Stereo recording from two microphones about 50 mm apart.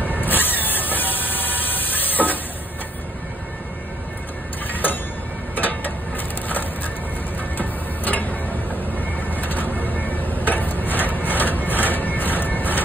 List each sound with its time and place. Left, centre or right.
0.0 s vehicle: left
0.7 s music: left
5.6 s mechanisms: left
7.3 s a sound: left